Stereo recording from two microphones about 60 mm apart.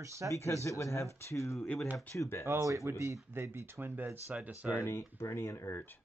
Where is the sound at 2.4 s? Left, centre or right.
Right.